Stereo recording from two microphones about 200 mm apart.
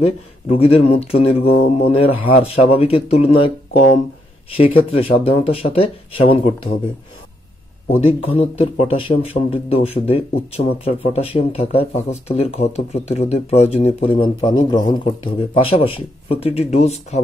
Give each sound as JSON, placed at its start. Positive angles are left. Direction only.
{"t": 0.0, "sound": "a man's voice", "side_deg": 30}
{"t": 8.4, "sound": "a man's voice", "side_deg": 30}